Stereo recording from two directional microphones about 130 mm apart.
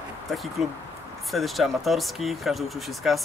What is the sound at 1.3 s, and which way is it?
Speech, centre (ahead or behind).